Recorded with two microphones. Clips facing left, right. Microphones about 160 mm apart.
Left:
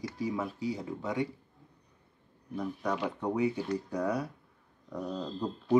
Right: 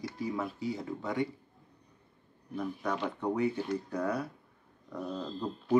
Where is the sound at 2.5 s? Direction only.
Centre (ahead or behind).